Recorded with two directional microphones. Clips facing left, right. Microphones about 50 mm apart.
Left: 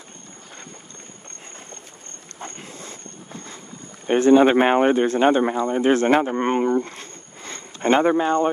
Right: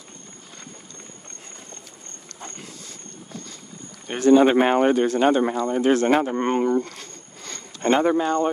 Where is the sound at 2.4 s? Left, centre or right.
Left.